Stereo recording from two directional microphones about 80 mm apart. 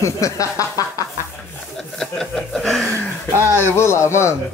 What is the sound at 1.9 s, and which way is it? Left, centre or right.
Chuckle, centre.